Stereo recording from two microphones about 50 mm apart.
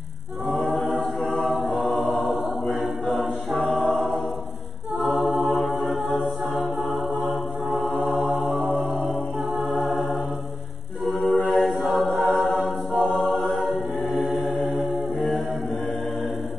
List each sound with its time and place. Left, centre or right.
0.5 s choir: centre
2.7 s music: centre
5.0 s a capella: centre
7.2 s music: centre
8.0 s mantra: centre
9.6 s music: centre
11.1 s a sound: centre
11.5 s a capella: centre